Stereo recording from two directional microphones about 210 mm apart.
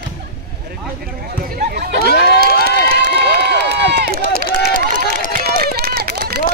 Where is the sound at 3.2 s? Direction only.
55° right (ahead or behind).